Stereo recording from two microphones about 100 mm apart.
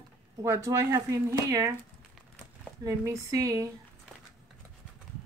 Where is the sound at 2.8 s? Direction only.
35° right (ahead or behind).